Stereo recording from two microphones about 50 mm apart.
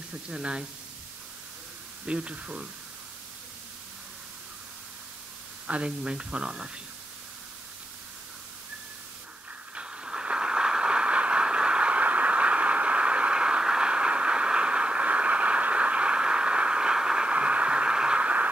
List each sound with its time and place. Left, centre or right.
0.3 s speech: centre
2.0 s speech: right
5.7 s speech: right
9.8 s a sound: centre